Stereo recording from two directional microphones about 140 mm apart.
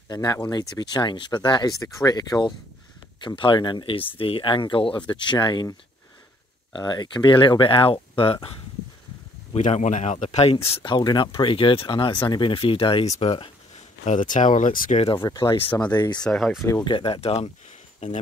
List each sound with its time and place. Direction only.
0.1 s speech: 30° left (ahead or behind)
9.5 s speech: 55° left (ahead or behind)
10.5 s speech: 40° left (ahead or behind)
14.0 s speech: 65° left (ahead or behind)
15.2 s speech: 25° left (ahead or behind)
16.3 s speech: 5° left (ahead or behind)
16.8 s speech: 40° left (ahead or behind)
18.0 s speech: 60° left (ahead or behind)